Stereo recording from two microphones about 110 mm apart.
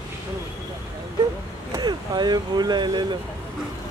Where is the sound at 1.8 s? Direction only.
40° right (ahead or behind).